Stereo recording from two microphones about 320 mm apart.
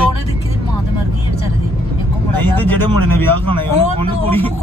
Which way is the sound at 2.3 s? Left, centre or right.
Centre.